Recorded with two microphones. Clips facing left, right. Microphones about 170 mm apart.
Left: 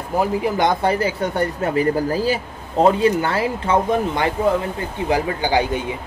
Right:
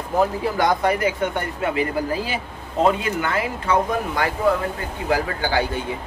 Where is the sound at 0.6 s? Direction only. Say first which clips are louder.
Right 1 dB; 25° left (ahead or behind).